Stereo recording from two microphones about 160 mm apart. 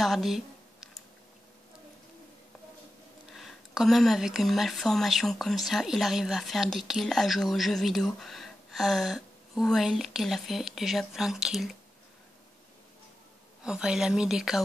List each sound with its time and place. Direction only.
0.0 s a sound: centre (ahead or behind)
3.3 s speech: centre (ahead or behind)
13.7 s speech: 5° right (ahead or behind)